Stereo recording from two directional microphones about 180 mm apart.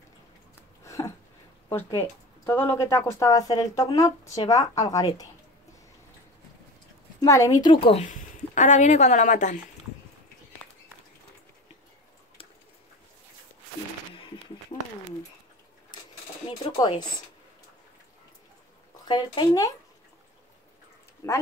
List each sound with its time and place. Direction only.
0.6 s a sound: 15° left (ahead or behind)
1.7 s a woman's voice: 15° left (ahead or behind)
7.2 s speech: 15° left (ahead or behind); by 9.6 s 45° left (ahead or behind)
16.4 s a sound: 25° left (ahead or behind)
19.0 s a woman's voice: 25° left (ahead or behind)
21.2 s speech: 20° left (ahead or behind)